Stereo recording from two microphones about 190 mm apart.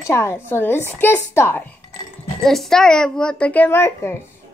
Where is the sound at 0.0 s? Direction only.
15° left (ahead or behind).